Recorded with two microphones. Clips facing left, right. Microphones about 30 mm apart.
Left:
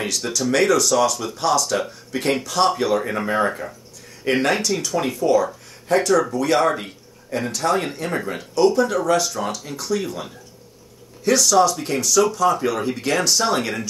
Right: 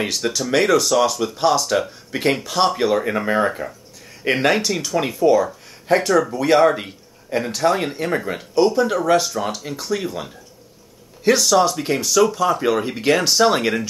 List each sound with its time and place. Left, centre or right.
0.5 s speech: centre
4.4 s speech: centre
4.8 s speech: centre